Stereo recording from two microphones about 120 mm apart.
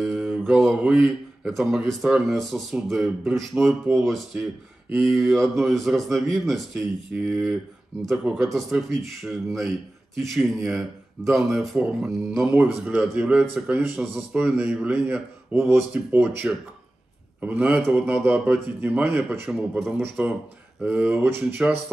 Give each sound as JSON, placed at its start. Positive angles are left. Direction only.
{"t": 0.0, "sound": "speech", "side_deg": 0}